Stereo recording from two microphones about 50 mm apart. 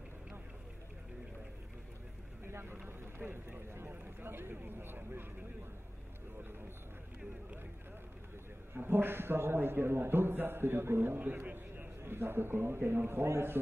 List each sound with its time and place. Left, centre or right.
2.4 s vehicle: right
4.0 s a sound: right
8.7 s a man's voice: right
11.1 s a man's voice: right